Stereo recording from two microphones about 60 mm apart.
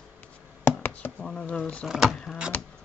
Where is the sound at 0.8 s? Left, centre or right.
Left.